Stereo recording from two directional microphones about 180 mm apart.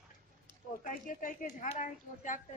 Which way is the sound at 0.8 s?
45° left (ahead or behind).